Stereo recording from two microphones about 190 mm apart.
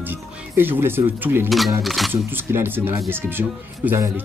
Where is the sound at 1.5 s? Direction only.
Centre (ahead or behind).